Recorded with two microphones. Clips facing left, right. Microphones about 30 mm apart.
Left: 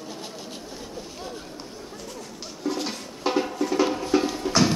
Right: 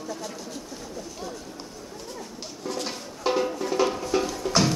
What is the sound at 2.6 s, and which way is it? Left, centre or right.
Music, centre.